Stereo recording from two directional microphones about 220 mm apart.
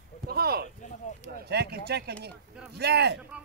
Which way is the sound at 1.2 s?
45° right (ahead or behind).